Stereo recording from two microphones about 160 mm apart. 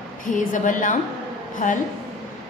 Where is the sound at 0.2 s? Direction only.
55° left (ahead or behind).